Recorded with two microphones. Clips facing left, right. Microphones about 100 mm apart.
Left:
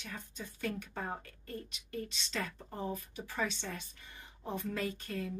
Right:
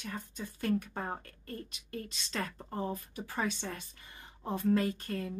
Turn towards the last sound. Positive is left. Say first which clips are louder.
# right 4 dB
turn(degrees=-40)  # may be behind; listen again after turning